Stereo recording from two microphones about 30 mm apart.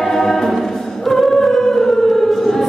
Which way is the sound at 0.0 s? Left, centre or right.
Centre.